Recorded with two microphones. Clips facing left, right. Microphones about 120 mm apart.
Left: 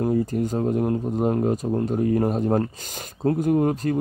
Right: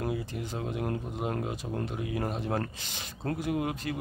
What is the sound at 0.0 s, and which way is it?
Speech, 40° left (ahead or behind).